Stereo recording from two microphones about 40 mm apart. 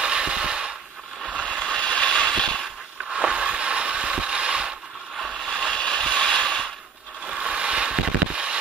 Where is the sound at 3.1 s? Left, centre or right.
Right.